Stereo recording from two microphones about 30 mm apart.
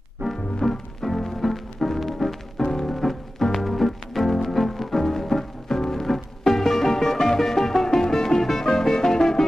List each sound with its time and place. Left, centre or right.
0.6 s music: centre
2.5 s music: centre